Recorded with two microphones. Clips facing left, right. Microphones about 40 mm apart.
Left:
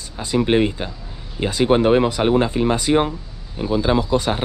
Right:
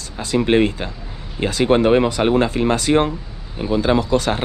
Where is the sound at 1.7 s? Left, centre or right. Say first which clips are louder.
Right 1 dB; right.